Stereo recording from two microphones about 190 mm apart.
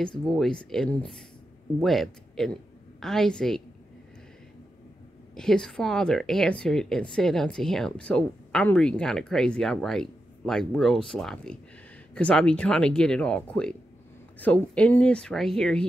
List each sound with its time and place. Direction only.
0.2 s speech: 5° left (ahead or behind)
5.3 s speech: 5° left (ahead or behind)